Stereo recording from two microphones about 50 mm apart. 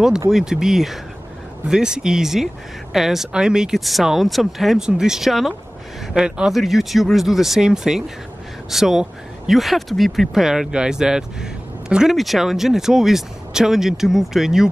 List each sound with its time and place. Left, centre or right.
0.3 s speech: centre
3.7 s speech: centre
6.5 s speech: centre
12.1 s speech: centre